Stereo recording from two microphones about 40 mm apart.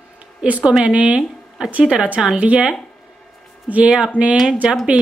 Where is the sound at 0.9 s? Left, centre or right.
Right.